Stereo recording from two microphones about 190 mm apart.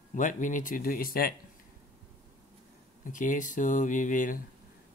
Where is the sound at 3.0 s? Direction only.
45° left (ahead or behind).